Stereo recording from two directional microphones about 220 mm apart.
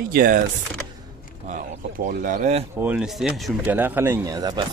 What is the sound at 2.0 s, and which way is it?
Speech, 35° right (ahead or behind).